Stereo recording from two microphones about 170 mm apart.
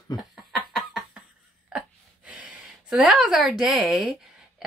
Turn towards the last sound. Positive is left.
turn(degrees=-5)  # may be behind; listen again after turning